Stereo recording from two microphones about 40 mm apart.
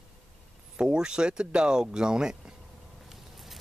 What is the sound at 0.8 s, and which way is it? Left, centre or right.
Speech, centre.